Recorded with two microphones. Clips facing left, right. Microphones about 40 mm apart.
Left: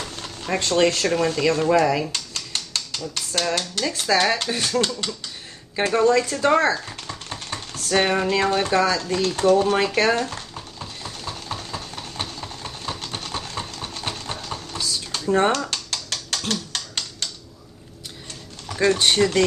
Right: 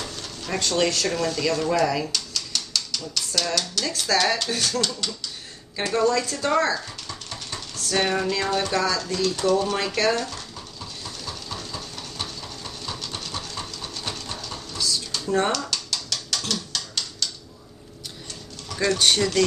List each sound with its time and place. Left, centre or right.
0.0 s speech: left
2.1 s typewriter: left
3.9 s speech: left
9.9 s stir: left
13.0 s a sound: left
15.7 s a sound: left
16.4 s typing: left
18.7 s speech: left